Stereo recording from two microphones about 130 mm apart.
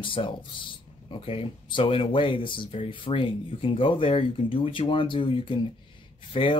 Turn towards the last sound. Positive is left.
turn(degrees=40)  # may be behind; listen again after turning